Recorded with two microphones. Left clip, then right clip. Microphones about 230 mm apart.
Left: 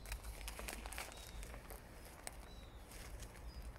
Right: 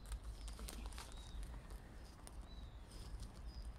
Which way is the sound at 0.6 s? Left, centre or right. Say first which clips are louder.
Left 5 dB; centre.